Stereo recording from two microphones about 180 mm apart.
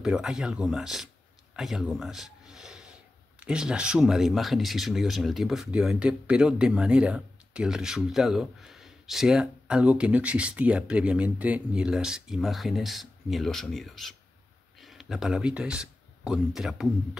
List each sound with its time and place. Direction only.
0.0 s speech: 5° right (ahead or behind)